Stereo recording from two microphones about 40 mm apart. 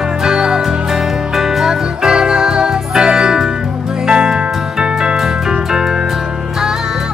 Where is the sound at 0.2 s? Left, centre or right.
Centre.